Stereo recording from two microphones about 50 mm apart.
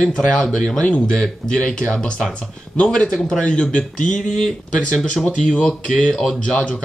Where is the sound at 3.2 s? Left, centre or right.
Centre.